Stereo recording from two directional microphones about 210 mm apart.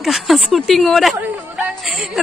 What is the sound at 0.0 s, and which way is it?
A woman's voice, centre (ahead or behind).